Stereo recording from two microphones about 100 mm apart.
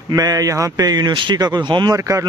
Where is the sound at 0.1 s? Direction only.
35° right (ahead or behind).